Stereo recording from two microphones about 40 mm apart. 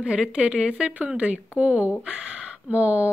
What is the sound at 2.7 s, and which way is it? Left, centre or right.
Speech, right.